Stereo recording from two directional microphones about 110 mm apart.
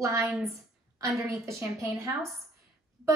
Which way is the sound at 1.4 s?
25° right (ahead or behind).